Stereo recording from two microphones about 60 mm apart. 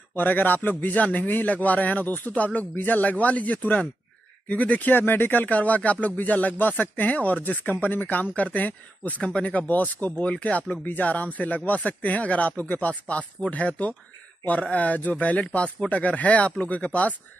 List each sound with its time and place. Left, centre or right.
0.1 s speech: left